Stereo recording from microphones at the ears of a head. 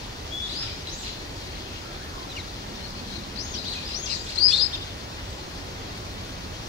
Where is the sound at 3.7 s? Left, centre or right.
Left.